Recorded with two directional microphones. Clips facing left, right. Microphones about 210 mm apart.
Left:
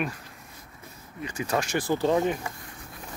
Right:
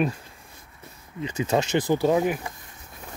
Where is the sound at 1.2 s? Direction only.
20° right (ahead or behind).